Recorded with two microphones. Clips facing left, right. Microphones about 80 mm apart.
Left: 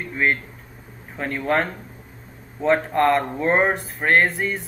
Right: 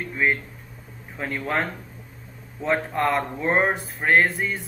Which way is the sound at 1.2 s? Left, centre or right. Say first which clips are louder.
Left 4 dB; centre.